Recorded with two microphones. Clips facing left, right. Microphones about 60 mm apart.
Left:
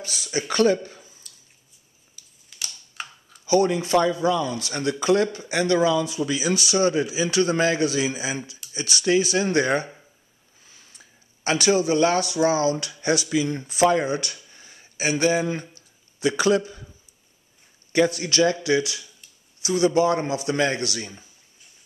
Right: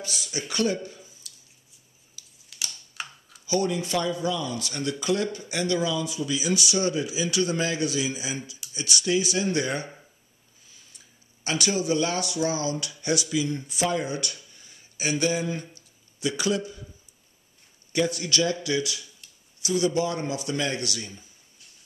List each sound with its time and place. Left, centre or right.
0.1 s speech: left
2.5 s computer keyboard: centre
3.4 s speech: left
10.7 s a sound: left
11.4 s speech: left
17.9 s speech: left